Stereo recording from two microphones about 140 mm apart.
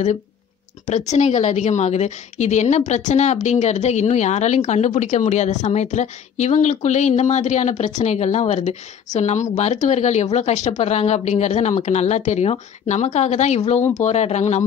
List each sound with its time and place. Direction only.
0.8 s a woman's voice: 55° left (ahead or behind)